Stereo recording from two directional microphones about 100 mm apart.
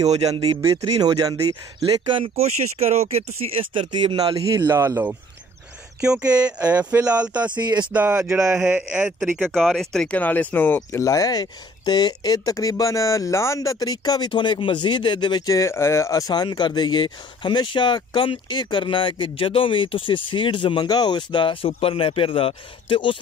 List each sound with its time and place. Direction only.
0.1 s speech: 90° right
0.4 s speech: 40° right (ahead or behind)
2.2 s speech: 90° right; by 4.4 s 50° right (ahead or behind)
4.6 s speech: 30° right (ahead or behind)
5.9 s speech: 10° right (ahead or behind)
7.5 s speech: 45° right (ahead or behind)
7.9 s speech: 15° right (ahead or behind)
8.4 s speech: 5° right (ahead or behind)
9.5 s speech: 5° left (ahead or behind)
10.1 s speech: 15° left (ahead or behind)
11.0 s speech: 35° left (ahead or behind)
15.5 s speech: 30° left (ahead or behind); by 23.1 s 60° left (ahead or behind)